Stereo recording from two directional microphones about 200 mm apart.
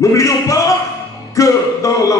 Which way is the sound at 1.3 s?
15° left (ahead or behind).